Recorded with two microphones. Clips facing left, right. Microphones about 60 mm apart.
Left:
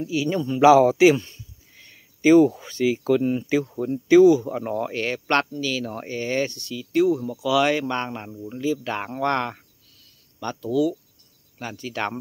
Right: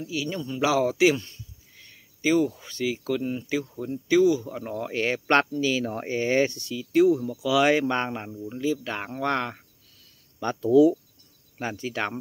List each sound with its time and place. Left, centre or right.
0.0 s speech: left
2.2 s speech: left
2.6 s speech: left
4.9 s speech: centre
8.3 s speech: centre
10.4 s speech: right